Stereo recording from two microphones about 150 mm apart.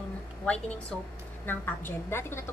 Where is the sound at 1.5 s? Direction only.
15° left (ahead or behind).